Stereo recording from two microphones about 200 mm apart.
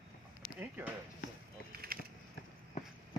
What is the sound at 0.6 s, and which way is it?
Speech, 10° right (ahead or behind).